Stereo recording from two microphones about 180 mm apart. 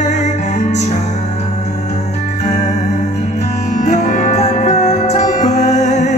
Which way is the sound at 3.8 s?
40° left (ahead or behind).